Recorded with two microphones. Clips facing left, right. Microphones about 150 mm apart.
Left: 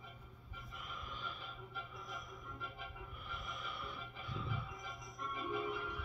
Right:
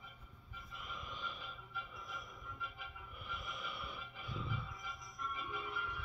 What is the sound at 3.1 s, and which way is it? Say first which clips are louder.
Music: right 3 dB; 5° right (ahead or behind).